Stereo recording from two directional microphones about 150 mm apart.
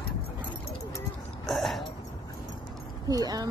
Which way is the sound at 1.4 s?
Centre (ahead or behind).